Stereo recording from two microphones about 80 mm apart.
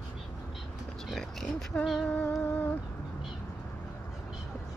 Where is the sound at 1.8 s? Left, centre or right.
Centre.